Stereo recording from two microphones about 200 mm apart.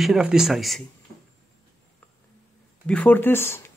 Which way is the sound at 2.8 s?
5° left (ahead or behind).